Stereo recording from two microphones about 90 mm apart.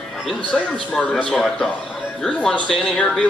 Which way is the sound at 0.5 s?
Centre (ahead or behind).